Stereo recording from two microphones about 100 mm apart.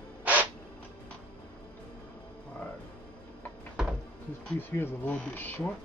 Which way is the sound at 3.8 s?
10° right (ahead or behind).